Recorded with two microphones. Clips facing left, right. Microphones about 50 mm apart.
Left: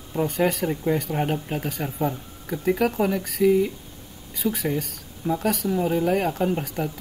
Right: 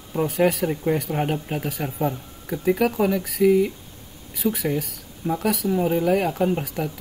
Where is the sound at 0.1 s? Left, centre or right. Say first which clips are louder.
Right 2 dB; centre.